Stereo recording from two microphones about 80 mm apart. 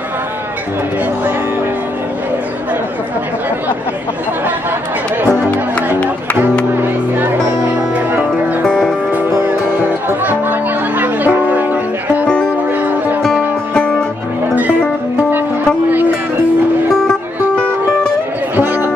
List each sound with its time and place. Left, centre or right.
5.3 s music: centre
6.8 s music: right
10.0 s music: right
17.1 s music: centre